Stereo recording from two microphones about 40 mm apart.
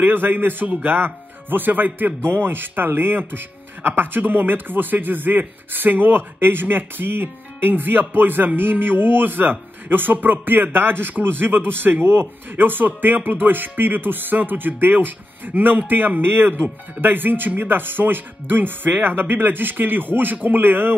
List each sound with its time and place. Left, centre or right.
0.0 s speech: right
12.4 s speech: right
17.0 s speech: right